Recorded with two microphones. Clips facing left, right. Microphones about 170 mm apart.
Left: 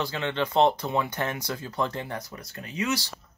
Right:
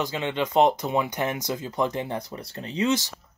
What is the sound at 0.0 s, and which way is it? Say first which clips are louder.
Speech: right 1 dB; 15° right (ahead or behind).